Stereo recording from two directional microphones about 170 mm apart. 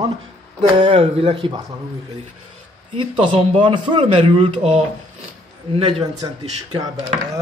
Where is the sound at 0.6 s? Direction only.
35° right (ahead or behind).